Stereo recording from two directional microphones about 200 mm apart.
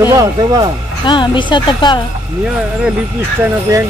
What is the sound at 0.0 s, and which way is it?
Speech, 15° right (ahead or behind).